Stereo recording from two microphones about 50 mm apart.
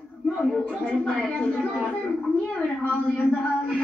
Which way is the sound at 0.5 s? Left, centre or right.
Centre.